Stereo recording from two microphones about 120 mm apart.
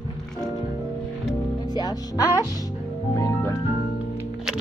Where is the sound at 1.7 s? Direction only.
35° left (ahead or behind).